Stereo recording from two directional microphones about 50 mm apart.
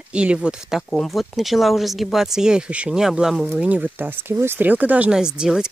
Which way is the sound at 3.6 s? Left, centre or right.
Right.